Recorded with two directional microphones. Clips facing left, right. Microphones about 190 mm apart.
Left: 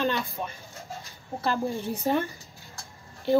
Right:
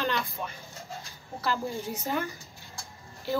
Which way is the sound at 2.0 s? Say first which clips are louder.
Left 6 dB; 30° left (ahead or behind).